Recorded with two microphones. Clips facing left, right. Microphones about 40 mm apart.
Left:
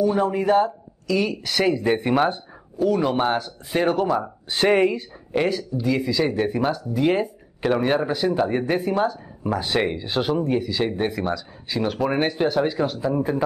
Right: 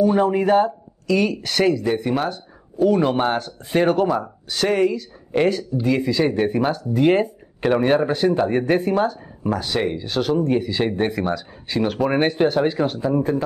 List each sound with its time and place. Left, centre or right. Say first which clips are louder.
0.0 s speech: right 3 dB; centre
1.7 s speech: left 2 dB; centre
2.8 s speech: right 3 dB; centre
4.5 s speech: left 1 dB; left
5.3 s speech: right 3 dB; centre
5.8 s speech: right 1 dB; centre
9.6 s speech: left 3 dB; centre
10.6 s speech: right 2 dB; centre
13.3 s speech: right 2 dB; centre